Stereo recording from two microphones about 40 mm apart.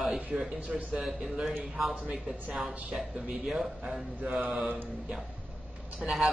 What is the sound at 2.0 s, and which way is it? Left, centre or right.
Speech, centre.